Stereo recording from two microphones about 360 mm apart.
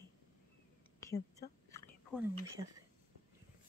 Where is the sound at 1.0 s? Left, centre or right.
Centre.